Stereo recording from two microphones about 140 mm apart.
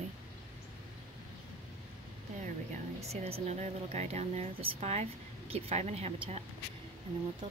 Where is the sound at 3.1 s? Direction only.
45° right (ahead or behind).